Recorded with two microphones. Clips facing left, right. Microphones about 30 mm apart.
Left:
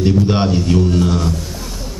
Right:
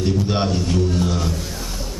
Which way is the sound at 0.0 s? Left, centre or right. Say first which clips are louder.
Left 5 dB; centre.